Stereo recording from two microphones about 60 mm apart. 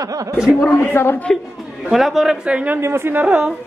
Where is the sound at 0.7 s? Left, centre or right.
Left.